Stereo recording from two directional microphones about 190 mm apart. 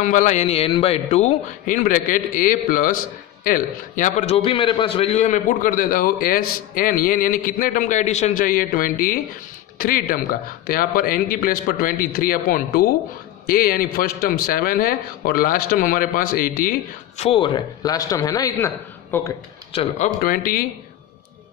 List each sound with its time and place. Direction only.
0.0 s a man's voice: 40° left (ahead or behind)
17.2 s a man's voice: 30° left (ahead or behind)
19.7 s a man's voice: 30° left (ahead or behind)
20.2 s a man's voice: 50° left (ahead or behind)